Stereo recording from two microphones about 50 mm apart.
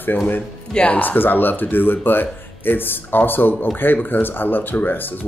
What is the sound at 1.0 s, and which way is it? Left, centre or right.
Speech, left.